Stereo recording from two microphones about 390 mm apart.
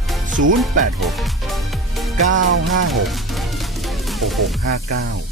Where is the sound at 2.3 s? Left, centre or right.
Right.